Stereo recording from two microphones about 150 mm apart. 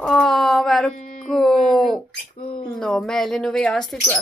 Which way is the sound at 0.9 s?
55° left (ahead or behind).